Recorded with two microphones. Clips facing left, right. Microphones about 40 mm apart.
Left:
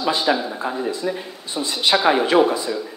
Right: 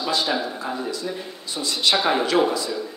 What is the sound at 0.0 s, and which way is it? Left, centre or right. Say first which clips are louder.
Speech: left 3 dB; left.